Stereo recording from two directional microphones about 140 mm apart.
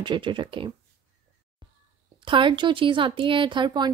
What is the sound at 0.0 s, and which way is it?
Speech, 35° right (ahead or behind).